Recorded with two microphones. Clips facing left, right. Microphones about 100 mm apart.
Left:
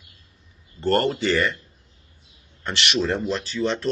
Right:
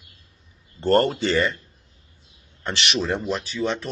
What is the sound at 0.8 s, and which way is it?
Speech, 25° right (ahead or behind).